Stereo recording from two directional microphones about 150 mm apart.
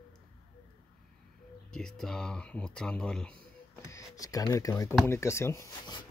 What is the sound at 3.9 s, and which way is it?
Speech, 25° left (ahead or behind).